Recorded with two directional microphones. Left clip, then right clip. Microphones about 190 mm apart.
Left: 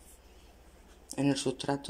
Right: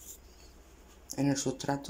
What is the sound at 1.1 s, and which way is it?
Speech, centre (ahead or behind).